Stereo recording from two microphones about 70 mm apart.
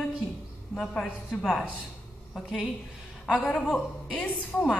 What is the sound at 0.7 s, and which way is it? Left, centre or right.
Speech, centre.